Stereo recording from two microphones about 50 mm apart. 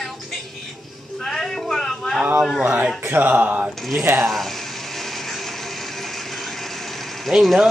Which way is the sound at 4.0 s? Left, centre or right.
Right.